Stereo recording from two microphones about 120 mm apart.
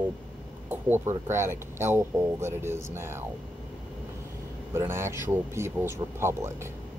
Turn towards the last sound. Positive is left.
turn(degrees=-20)  # may be behind; listen again after turning